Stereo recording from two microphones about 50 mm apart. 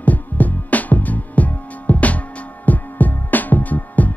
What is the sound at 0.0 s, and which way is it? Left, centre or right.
Music, left.